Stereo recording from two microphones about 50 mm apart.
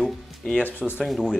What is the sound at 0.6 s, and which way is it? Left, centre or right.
Speech, left.